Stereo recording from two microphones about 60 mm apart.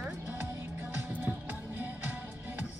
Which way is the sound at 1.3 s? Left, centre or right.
Right.